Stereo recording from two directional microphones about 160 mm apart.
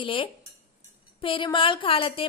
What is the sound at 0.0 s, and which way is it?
Speech, 30° left (ahead or behind).